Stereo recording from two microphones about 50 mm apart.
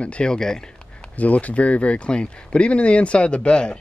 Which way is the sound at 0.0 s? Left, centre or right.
Left.